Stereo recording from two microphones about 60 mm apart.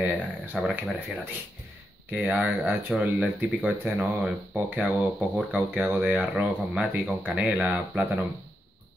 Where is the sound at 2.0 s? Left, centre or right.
Right.